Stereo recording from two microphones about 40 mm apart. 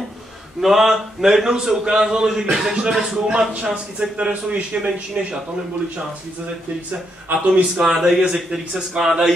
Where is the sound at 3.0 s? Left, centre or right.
Centre.